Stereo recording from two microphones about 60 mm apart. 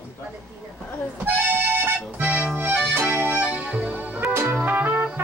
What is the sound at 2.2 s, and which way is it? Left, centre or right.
Accordion, right.